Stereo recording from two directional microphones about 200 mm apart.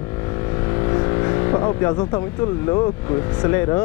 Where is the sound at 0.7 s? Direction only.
20° left (ahead or behind).